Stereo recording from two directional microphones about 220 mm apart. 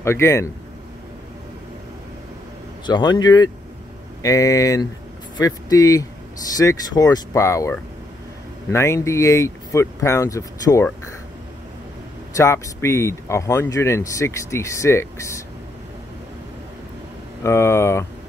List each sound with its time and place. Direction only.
0.0 s speech: 10° left (ahead or behind)
2.9 s speech: 20° left (ahead or behind)
12.4 s speech: 15° left (ahead or behind)
17.4 s speech: 10° left (ahead or behind)